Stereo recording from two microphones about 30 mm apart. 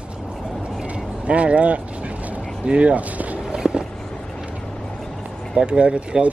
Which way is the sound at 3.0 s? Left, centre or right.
Right.